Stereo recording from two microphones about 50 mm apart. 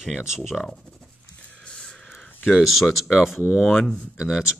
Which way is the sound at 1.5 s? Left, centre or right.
Centre.